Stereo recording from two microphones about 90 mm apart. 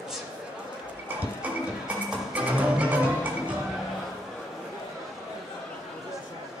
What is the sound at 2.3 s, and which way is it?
Music, 15° right (ahead or behind).